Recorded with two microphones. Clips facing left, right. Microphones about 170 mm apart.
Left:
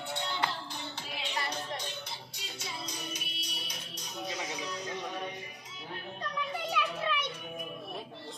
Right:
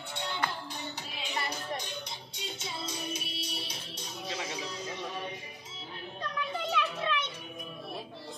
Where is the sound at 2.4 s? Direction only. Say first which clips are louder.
Right 4 dB; 25° right (ahead or behind).